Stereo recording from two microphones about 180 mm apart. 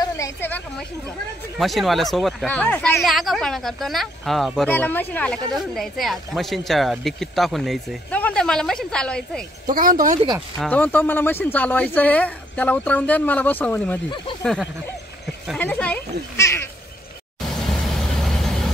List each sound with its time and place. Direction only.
0.0 s a sound: 15° left (ahead or behind)
1.6 s speech: centre (ahead or behind)
9.7 s speech: 50° right (ahead or behind)
10.6 s speech: 10° left (ahead or behind)
17.6 s vehicle: centre (ahead or behind)